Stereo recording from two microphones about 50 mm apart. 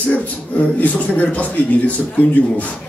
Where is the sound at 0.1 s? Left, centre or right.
Left.